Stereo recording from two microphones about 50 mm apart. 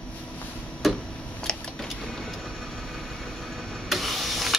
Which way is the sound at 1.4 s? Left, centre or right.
Centre.